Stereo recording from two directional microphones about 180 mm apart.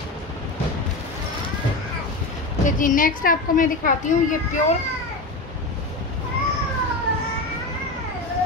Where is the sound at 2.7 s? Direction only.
45° left (ahead or behind).